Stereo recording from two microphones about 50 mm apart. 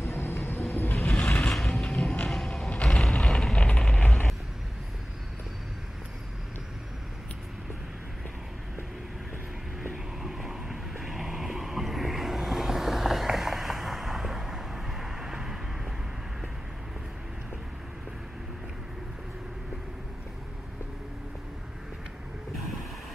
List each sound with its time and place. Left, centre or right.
0.0 s vehicle: left
0.6 s vehicle: left
1.0 s vehicle: left
1.5 s music: centre
1.8 s a sound: centre
2.7 s creak: left
3.0 s vehicle: centre
10.2 s vehicle: centre
22.6 s vehicle: centre